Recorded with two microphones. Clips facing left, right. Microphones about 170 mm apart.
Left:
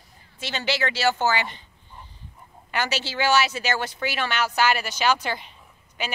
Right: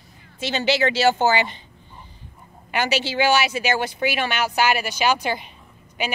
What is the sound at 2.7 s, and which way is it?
Speech, 15° right (ahead or behind).